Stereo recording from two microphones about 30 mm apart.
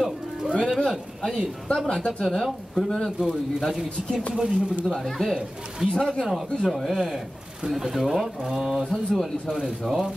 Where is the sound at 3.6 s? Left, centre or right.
Centre.